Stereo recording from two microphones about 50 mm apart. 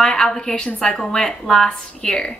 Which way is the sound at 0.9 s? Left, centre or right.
Centre.